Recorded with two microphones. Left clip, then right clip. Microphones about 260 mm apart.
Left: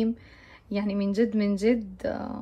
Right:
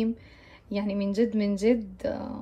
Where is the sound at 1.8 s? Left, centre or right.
Centre.